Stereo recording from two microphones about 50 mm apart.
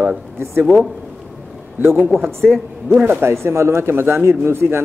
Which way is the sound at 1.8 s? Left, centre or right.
Right.